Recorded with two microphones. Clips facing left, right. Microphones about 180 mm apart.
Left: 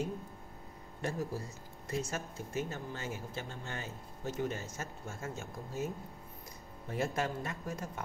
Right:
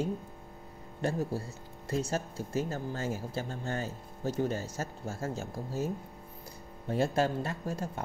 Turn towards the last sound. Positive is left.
turn(degrees=-30)  # may be behind; listen again after turning